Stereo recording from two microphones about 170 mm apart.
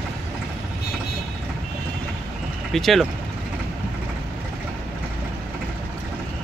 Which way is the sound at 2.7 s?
Centre (ahead or behind).